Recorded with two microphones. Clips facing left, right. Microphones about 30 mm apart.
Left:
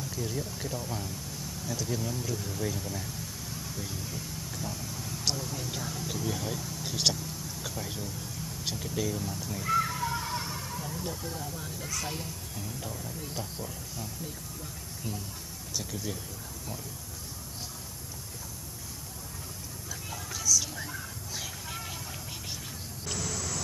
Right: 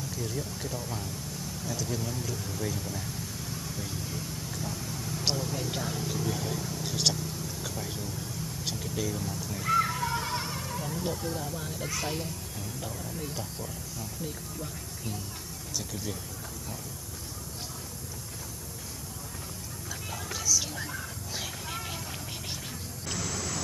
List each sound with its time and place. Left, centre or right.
0.0 s speech: centre
6.1 s speech: centre
9.6 s a sound: centre
12.2 s speech: centre
15.8 s speech: centre
20.3 s a sound: centre
23.0 s vehicle: centre